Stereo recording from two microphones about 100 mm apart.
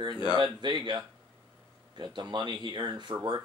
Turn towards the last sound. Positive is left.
turn(degrees=-50)  # may be behind; listen again after turning